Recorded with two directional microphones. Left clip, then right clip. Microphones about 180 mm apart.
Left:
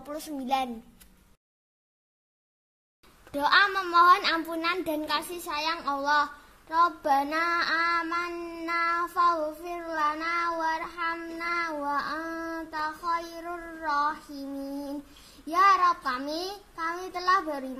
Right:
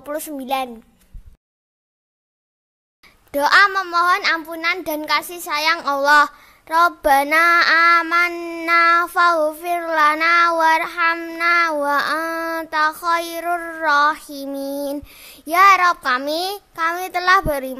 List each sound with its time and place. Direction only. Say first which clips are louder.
0.0 s a child's voice: right 9 dB; 40° right (ahead or behind)
3.0 s a child's voice: right 9 dB; 35° right (ahead or behind)
11.9 s child singing: right 11 dB; 40° right (ahead or behind)
15.4 s a child's voice: right 9 dB; 40° right (ahead or behind)